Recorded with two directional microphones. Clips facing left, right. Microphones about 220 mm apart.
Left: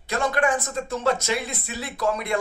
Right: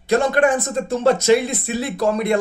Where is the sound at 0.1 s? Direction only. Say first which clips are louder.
Right 7 dB; 40° right (ahead or behind).